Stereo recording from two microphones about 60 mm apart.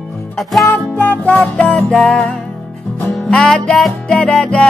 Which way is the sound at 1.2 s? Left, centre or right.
Left.